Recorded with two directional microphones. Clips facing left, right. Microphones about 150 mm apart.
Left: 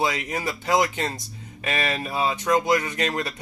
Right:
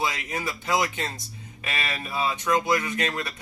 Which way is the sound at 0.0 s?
40° left (ahead or behind).